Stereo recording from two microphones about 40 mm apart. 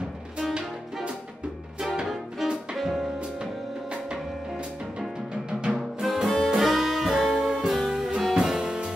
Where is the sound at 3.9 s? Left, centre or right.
Right.